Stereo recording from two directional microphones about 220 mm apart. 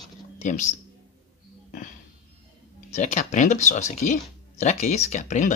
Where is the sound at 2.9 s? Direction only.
30° left (ahead or behind).